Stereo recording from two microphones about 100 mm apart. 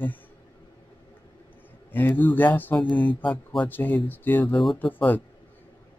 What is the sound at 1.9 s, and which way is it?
Speech, 20° left (ahead or behind).